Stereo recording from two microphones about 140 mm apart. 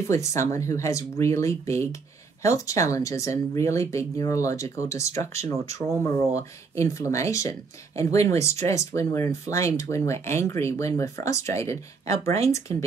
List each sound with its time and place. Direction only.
0.1 s speech: 20° left (ahead or behind)